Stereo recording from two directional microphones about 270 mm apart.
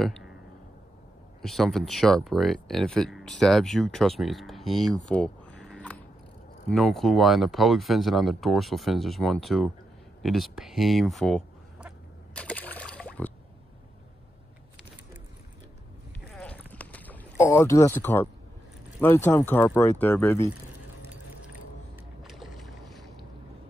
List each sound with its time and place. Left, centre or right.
1.4 s speech: centre
5.0 s a sound: centre
6.7 s speech: centre
12.4 s a sound: centre
16.7 s boat: centre
18.9 s speech: centre
22.2 s boat: centre